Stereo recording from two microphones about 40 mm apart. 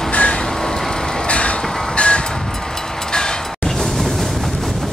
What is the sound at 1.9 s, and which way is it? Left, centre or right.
Vehicle, left.